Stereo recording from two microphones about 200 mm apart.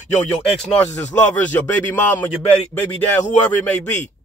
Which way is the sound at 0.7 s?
10° left (ahead or behind).